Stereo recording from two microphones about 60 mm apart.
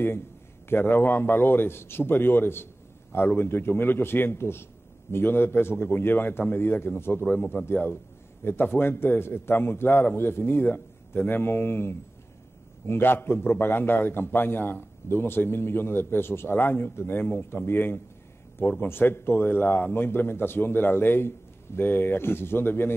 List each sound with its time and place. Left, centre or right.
0.7 s a man's voice: left